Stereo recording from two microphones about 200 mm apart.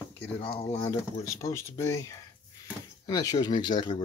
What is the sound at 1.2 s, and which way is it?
Speech, 15° left (ahead or behind).